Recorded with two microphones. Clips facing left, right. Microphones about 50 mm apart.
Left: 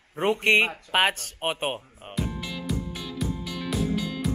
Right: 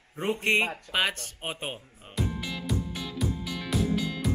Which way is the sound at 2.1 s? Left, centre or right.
Centre.